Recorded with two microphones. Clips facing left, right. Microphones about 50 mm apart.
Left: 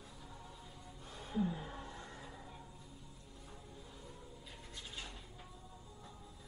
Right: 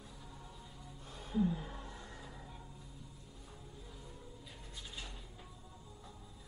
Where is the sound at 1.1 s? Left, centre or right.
Left.